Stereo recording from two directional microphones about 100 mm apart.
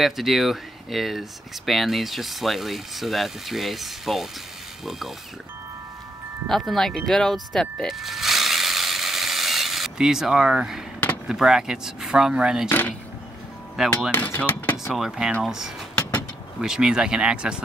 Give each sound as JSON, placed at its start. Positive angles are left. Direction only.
{"t": 0.0, "sound": "speech", "side_deg": 0}
{"t": 6.4, "sound": "speech", "side_deg": 0}
{"t": 7.8, "sound": "mechanisms", "side_deg": 0}
{"t": 11.2, "sound": "speech", "side_deg": -5}
{"t": 13.8, "sound": "speech", "side_deg": -5}
{"t": 14.1, "sound": "speech", "side_deg": 15}
{"t": 14.9, "sound": "speech", "side_deg": -5}
{"t": 15.9, "sound": "vehicle", "side_deg": 10}
{"t": 16.6, "sound": "speech", "side_deg": -5}